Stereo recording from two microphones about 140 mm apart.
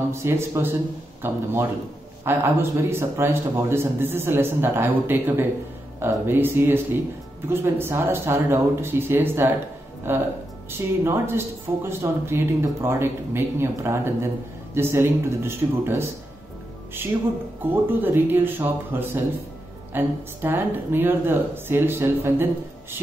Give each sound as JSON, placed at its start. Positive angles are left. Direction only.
{"t": 0.1, "sound": "speech", "side_deg": -20}
{"t": 17.8, "sound": "speech", "side_deg": -15}